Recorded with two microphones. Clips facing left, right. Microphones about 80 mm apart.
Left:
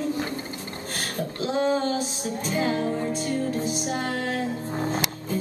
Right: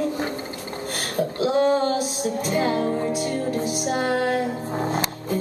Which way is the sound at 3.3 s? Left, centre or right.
Right.